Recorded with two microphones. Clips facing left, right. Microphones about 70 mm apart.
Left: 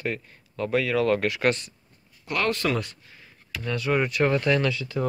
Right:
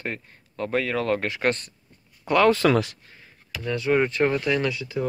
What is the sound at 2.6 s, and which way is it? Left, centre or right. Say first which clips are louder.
Speech: right 6 dB; right.